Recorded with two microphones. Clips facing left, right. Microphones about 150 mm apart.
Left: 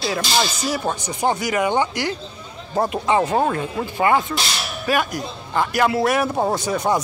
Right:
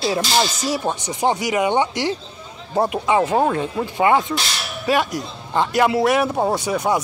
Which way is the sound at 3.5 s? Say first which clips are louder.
Right 2 dB; 20° right (ahead or behind).